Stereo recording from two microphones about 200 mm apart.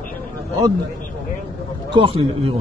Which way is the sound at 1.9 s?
25° right (ahead or behind).